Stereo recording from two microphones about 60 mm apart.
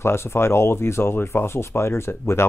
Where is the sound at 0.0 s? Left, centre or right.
Left.